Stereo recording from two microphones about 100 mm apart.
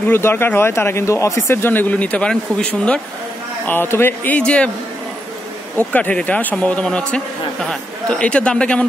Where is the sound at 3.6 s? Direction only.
20° left (ahead or behind).